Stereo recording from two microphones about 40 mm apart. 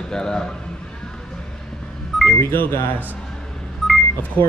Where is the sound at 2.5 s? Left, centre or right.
Left.